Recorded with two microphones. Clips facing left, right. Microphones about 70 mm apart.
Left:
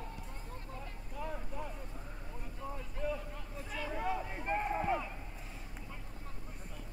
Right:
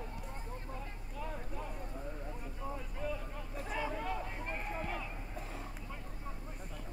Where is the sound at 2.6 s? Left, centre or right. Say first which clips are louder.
Left 1 dB; centre.